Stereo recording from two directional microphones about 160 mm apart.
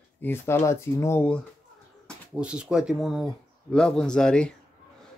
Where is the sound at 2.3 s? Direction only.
5° right (ahead or behind).